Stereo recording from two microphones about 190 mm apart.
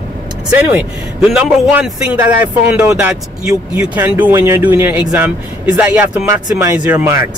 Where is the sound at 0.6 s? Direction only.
5° right (ahead or behind).